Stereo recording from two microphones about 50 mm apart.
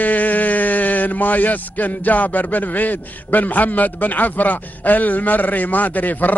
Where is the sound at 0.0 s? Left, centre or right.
Left.